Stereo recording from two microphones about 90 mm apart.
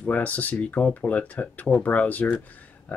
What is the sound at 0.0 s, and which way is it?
Speech, 15° left (ahead or behind).